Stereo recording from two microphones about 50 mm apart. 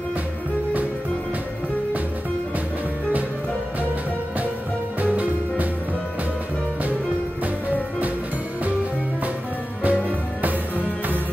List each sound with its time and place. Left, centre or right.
5.0 s music: right
9.8 s music: right